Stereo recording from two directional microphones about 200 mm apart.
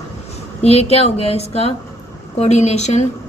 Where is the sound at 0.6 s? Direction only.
30° left (ahead or behind).